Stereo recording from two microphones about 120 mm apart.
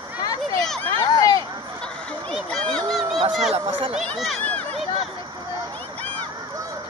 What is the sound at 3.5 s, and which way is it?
Speech, 60° right (ahead or behind).